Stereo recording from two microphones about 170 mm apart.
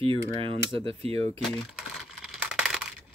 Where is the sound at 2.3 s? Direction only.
5° right (ahead or behind).